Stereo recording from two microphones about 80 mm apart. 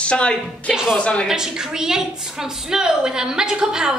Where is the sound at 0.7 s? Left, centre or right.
Centre.